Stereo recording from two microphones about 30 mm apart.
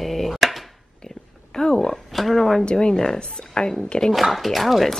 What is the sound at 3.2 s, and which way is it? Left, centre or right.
Speech, left.